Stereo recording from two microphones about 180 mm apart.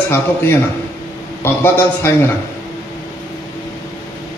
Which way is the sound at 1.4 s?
15° left (ahead or behind).